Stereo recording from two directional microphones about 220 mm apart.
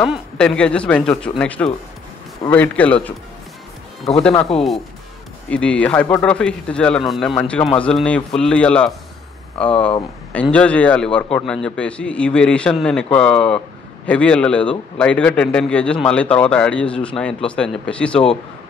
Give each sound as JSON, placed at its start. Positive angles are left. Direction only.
{"t": 0.1, "sound": "a man's voice", "side_deg": 5}
{"t": 5.5, "sound": "a man's voice", "side_deg": 5}